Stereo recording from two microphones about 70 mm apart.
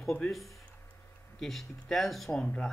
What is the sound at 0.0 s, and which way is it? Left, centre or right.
Speech, centre.